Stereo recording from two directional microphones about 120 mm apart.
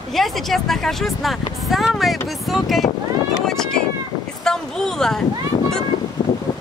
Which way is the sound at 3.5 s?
5° left (ahead or behind).